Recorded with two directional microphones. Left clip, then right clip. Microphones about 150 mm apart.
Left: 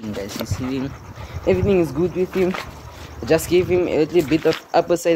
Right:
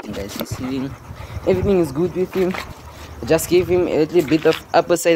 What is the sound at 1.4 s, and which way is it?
Speech, 15° right (ahead or behind).